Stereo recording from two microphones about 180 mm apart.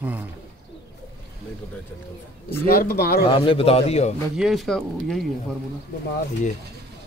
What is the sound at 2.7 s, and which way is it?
Speech, 55° left (ahead or behind).